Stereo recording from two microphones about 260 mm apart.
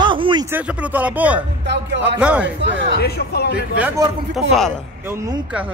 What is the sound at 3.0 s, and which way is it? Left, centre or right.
Speech, left.